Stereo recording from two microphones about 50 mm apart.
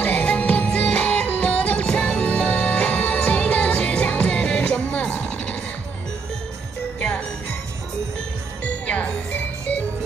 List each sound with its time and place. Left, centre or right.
0.0 s music: left
5.1 s a sound: left
7.0 s music: left
8.8 s music: left